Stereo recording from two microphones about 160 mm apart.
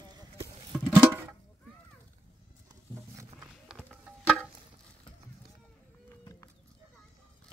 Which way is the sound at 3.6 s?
5° right (ahead or behind).